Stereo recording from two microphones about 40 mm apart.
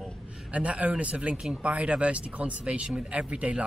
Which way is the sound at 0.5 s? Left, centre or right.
Right.